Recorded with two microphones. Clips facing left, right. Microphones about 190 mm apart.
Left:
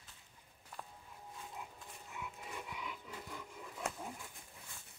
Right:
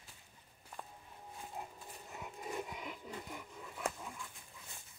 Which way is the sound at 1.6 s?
40° right (ahead or behind).